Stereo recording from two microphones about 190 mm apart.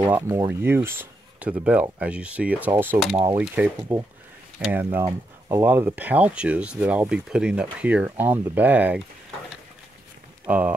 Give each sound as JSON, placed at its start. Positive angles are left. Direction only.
{"t": 0.0, "sound": "speech", "side_deg": -10}
{"t": 4.8, "sound": "speech", "side_deg": -15}
{"t": 10.5, "sound": "speech", "side_deg": -5}